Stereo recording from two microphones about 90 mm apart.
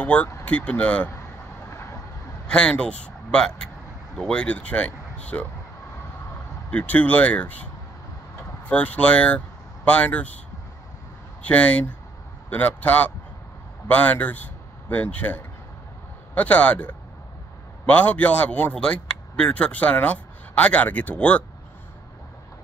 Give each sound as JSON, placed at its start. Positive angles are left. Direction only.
{"t": 0.0, "sound": "a man's voice", "side_deg": 15}
{"t": 1.7, "sound": "vehicle", "side_deg": 30}
{"t": 2.4, "sound": "a man's voice", "side_deg": 10}
{"t": 6.7, "sound": "a man's voice", "side_deg": 15}
{"t": 8.6, "sound": "a man's voice", "side_deg": 15}
{"t": 11.4, "sound": "a man's voice", "side_deg": 15}